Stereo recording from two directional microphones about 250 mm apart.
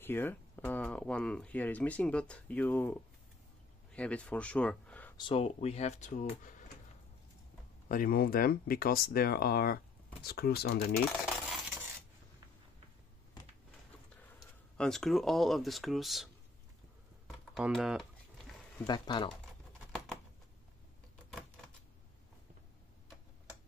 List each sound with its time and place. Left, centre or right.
0.0 s speech: centre
5.1 s speech: left
7.9 s speech: left
11.3 s a sound: centre
14.8 s speech: centre
17.3 s computer keyboard: centre
18.8 s speech: centre
21.3 s typewriter: centre